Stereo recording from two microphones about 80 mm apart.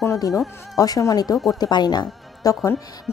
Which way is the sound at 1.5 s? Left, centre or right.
Left.